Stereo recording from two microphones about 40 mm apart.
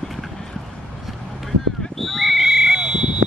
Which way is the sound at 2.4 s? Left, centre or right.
Centre.